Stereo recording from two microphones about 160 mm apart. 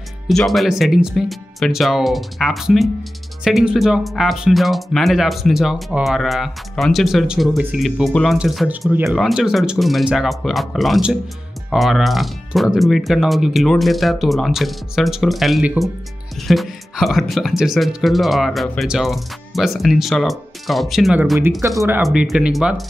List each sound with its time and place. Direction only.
0.3 s speech: centre (ahead or behind)
21.5 s speech: 20° right (ahead or behind)
22.0 s speech: centre (ahead or behind)